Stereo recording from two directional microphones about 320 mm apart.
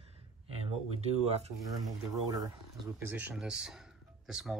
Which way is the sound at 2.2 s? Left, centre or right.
Centre.